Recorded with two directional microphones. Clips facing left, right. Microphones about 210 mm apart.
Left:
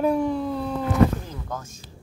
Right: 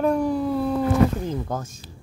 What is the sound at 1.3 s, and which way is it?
Speech, 35° right (ahead or behind).